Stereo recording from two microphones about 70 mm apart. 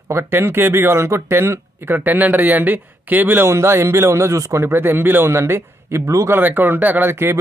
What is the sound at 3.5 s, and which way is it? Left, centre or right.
Speech, right.